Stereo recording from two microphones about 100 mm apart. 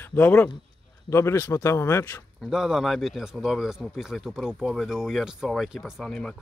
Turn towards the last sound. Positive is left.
turn(degrees=5)  # may be behind; listen again after turning